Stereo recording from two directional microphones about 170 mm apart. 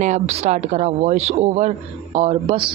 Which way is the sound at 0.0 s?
40° right (ahead or behind).